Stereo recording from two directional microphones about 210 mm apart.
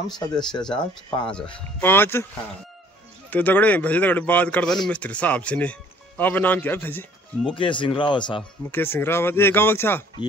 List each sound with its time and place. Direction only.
0.7 s speech: 5° left (ahead or behind)
3.3 s speech: 10° left (ahead or behind)
7.5 s speech: 25° left (ahead or behind)
8.7 s speech: 10° left (ahead or behind)